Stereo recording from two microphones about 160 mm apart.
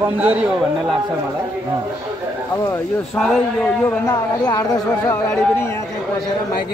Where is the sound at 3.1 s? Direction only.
5° left (ahead or behind).